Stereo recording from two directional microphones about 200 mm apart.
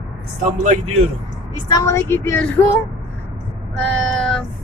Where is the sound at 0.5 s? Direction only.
35° right (ahead or behind).